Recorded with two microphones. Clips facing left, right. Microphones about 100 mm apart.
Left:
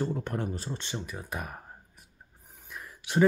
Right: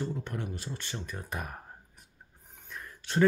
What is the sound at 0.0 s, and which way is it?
Speech, 45° left (ahead or behind).